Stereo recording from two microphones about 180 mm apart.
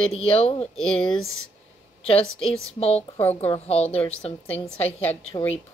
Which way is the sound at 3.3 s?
35° left (ahead or behind).